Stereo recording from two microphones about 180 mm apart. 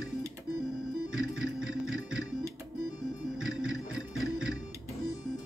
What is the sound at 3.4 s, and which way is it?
Music, 5° right (ahead or behind).